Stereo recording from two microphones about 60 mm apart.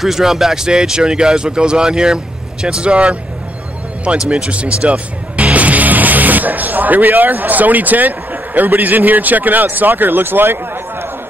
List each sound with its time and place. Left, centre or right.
0.0 s speech: centre
4.3 s speech: centre; by 11.1 s right